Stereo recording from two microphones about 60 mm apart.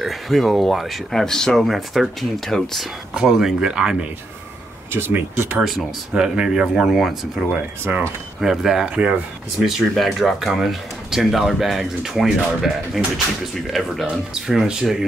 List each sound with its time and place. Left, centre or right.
0.0 s speech: centre
3.2 s speech: centre
4.9 s speech: right
5.6 s speech: centre
7.9 s speech: right
8.4 s speech: centre
8.8 s speech: centre
9.6 s speech: centre